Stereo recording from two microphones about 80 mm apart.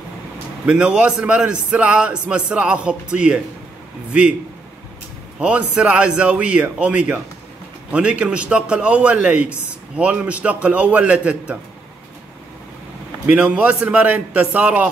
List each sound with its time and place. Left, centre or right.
0.7 s speech: centre
5.4 s speech: centre
13.3 s a man's voice: centre